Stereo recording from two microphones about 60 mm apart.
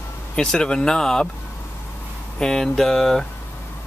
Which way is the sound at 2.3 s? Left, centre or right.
Centre.